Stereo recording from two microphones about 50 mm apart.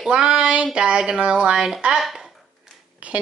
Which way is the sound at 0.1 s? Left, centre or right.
Centre.